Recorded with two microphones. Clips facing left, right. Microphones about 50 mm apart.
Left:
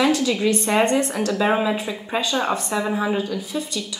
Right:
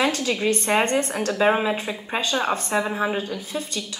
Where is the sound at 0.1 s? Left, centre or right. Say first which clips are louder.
Left 3 dB; right.